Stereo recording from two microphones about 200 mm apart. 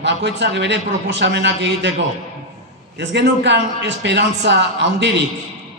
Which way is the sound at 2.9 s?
60° right (ahead or behind).